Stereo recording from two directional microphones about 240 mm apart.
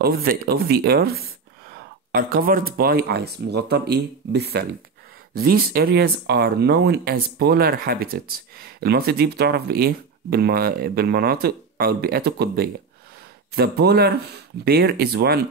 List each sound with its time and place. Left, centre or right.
0.0 s speech: right